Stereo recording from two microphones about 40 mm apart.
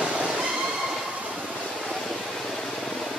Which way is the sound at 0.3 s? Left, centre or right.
Centre.